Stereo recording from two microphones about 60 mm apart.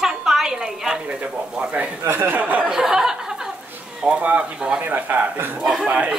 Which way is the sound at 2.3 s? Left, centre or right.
Right.